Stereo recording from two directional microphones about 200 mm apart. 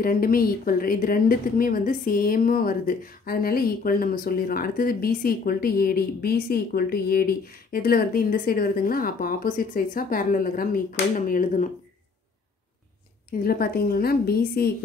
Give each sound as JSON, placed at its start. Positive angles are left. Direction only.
{"t": 0.0, "sound": "a woman's voice", "side_deg": 45}
{"t": 13.3, "sound": "a woman's voice", "side_deg": 50}